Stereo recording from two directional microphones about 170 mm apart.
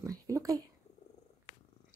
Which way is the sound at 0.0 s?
20° right (ahead or behind).